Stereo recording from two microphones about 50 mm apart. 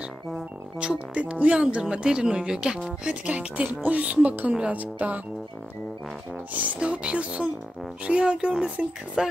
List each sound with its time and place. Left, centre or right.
0.3 s speech: right
6.8 s speech: right